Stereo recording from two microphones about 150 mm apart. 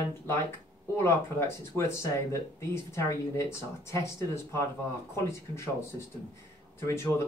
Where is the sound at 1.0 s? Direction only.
20° left (ahead or behind).